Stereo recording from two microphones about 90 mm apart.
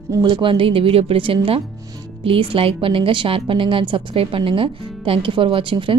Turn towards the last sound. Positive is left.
turn(degrees=-70)  # may be behind; listen again after turning